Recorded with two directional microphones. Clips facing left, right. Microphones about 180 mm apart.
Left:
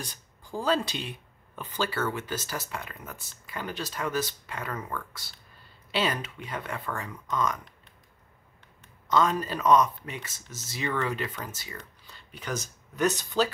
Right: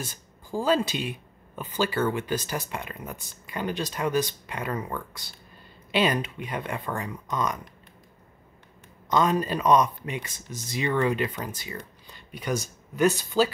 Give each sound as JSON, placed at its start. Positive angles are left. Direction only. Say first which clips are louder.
{"t": 0.0, "sound": "speech", "louder": "right 3 dB", "side_deg": -10}
{"t": 9.1, "sound": "speech", "louder": "right 2 dB", "side_deg": -20}